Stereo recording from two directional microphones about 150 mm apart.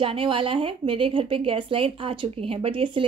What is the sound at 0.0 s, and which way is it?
Speech, 35° right (ahead or behind).